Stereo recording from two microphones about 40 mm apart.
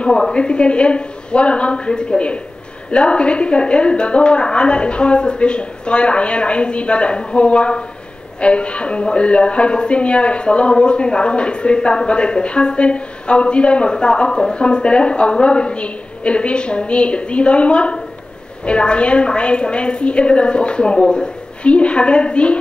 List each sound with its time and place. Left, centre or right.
0.0 s a man's voice: left